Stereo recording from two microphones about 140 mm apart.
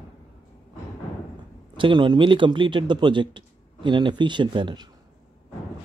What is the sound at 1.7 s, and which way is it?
A man's voice, 35° right (ahead or behind).